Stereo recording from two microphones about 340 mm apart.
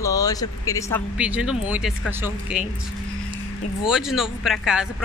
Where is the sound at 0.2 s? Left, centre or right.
Centre.